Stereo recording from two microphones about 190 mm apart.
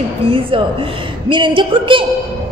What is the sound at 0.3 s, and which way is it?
A woman's voice, 30° right (ahead or behind).